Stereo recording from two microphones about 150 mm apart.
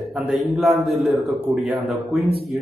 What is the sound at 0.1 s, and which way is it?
A man's voice, centre (ahead or behind).